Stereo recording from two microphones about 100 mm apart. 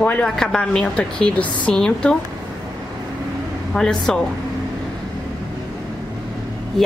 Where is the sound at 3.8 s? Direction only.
5° left (ahead or behind).